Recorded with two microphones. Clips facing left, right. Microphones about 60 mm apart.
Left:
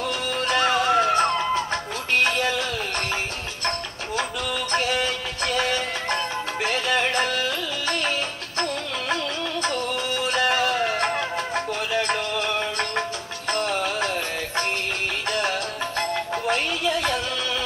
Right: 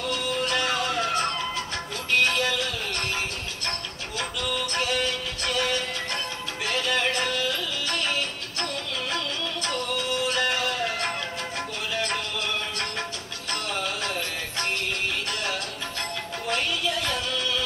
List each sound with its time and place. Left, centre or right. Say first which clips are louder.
0.1 s music: left 1 dB; left
4.9 s music: left 2 dB; left
9.6 s music: left 3 dB; left
13.5 s music: left 6 dB; left